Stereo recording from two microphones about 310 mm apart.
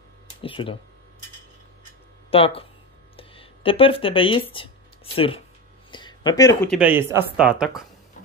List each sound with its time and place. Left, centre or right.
0.4 s speech: centre
2.3 s speech: centre
5.9 s a sound: centre
6.8 s speech: centre